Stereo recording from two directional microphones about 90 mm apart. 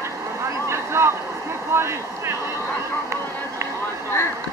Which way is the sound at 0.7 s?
30° right (ahead or behind).